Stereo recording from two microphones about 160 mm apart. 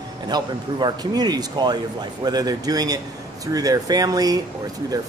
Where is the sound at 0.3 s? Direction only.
25° right (ahead or behind).